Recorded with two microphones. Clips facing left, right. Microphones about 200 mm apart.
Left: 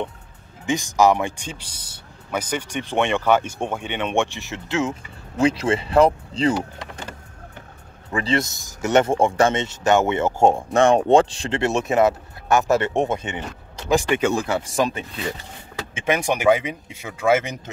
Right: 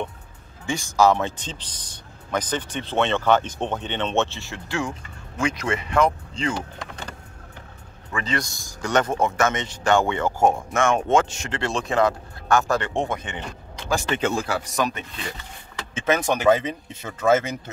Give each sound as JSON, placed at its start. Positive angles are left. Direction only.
{"t": 0.7, "sound": "speech", "side_deg": 15}
{"t": 5.4, "sound": "speech", "side_deg": 30}
{"t": 8.1, "sound": "speech", "side_deg": 30}
{"t": 15.9, "sound": "speech", "side_deg": 15}